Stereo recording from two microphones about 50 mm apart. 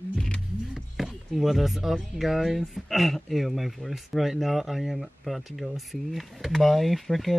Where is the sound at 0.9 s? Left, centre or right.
Centre.